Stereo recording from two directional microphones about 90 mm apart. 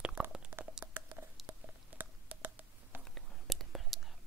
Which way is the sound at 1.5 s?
55° right (ahead or behind).